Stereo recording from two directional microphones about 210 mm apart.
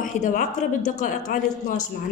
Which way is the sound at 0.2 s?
40° left (ahead or behind).